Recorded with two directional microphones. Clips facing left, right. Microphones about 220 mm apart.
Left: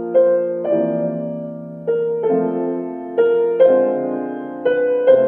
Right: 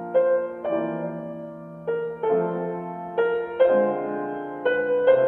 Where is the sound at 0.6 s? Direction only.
20° left (ahead or behind).